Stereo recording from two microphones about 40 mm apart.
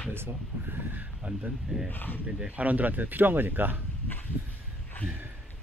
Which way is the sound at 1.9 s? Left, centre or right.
Left.